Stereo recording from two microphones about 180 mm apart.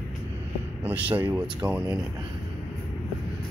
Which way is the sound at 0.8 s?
10° right (ahead or behind).